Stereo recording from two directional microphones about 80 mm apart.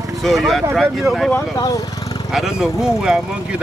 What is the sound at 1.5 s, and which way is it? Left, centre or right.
Speech, left.